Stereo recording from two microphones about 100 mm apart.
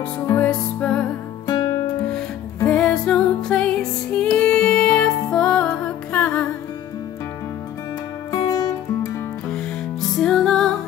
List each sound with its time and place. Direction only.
0.4 s music: 10° left (ahead or behind)
2.0 s music: 10° left (ahead or behind)
8.3 s music: 40° left (ahead or behind)
9.5 s music: 5° left (ahead or behind)